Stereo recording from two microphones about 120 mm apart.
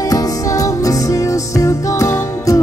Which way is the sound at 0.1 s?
30° left (ahead or behind).